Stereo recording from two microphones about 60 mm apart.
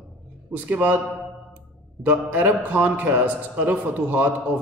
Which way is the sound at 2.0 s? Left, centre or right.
Right.